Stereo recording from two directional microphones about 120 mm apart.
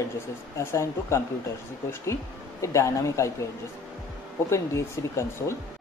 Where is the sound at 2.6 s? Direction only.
25° left (ahead or behind).